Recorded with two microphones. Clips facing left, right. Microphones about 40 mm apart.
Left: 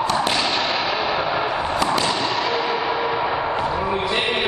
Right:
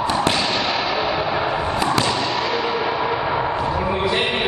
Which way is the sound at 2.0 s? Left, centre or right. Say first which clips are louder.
Even; centre.